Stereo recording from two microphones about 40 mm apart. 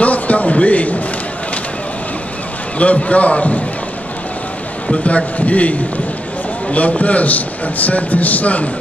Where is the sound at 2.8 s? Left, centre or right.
Left.